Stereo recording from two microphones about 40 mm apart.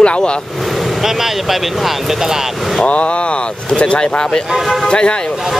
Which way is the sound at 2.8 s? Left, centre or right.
Left.